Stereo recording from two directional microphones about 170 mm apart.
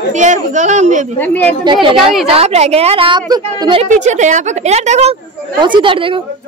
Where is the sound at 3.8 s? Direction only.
45° right (ahead or behind).